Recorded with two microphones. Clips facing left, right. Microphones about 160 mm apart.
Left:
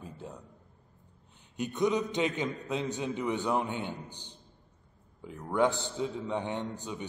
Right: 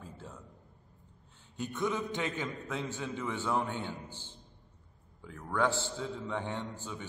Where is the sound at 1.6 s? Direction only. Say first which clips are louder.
Left 5 dB; 20° left (ahead or behind).